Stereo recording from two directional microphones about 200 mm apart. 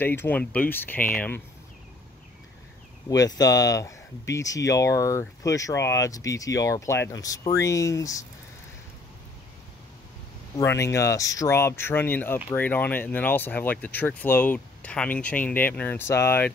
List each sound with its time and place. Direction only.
0.0 s speech: 10° left (ahead or behind)
3.1 s speech: 20° left (ahead or behind)
10.6 s speech: 15° left (ahead or behind)